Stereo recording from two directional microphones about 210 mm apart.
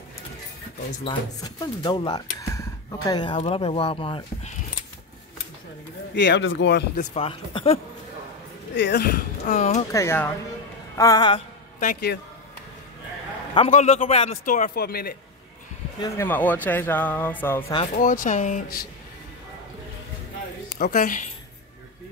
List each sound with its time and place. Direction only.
1.0 s speech: 20° left (ahead or behind)
6.1 s speech: 55° left (ahead or behind)
7.0 s speech: 25° left (ahead or behind)
8.7 s speech: 55° left (ahead or behind); by 9.8 s 35° left (ahead or behind)
9.9 s speech: 10° left (ahead or behind)
11.8 s speech: 45° left (ahead or behind)
13.6 s a man's voice: 30° left (ahead or behind)
16.0 s speech: 10° left (ahead or behind)
17.9 s a man's voice: 40° left (ahead or behind)
20.7 s a man's voice: 40° left (ahead or behind)